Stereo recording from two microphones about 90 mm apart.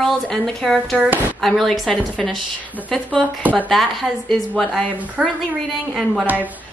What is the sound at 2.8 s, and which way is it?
Speech, 15° right (ahead or behind).